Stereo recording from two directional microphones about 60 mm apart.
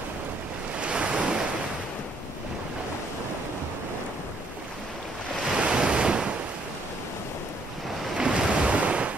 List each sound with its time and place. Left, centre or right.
0.7 s waves: centre
5.6 s waves: centre
8.2 s waves: centre